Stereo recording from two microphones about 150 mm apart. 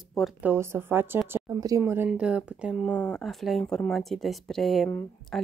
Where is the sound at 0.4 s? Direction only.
15° right (ahead or behind).